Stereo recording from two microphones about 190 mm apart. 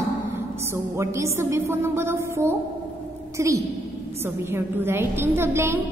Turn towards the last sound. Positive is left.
turn(degrees=-15)  # may be behind; listen again after turning